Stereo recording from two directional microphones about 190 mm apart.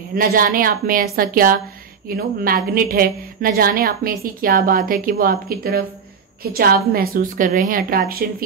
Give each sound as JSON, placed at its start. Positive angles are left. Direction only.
{"t": 0.1, "sound": "a woman's voice", "side_deg": -50}